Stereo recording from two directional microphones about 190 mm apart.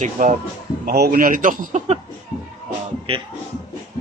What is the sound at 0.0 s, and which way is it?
Speech, 45° right (ahead or behind).